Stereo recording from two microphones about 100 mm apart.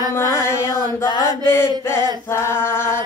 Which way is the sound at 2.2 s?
25° left (ahead or behind).